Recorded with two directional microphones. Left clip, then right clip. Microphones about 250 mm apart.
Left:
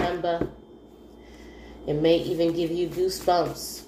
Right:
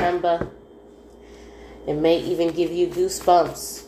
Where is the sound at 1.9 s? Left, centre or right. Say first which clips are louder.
Right 2 dB; right.